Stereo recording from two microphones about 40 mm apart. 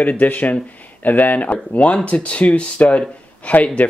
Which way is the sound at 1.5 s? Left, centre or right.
Left.